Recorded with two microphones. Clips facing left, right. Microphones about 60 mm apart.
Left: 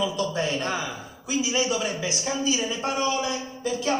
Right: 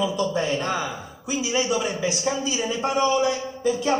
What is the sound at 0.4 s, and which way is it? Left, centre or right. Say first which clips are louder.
A man's voice: right 2 dB; right.